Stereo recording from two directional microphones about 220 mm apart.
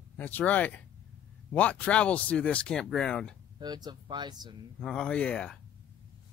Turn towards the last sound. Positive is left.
turn(degrees=5)  # may be behind; listen again after turning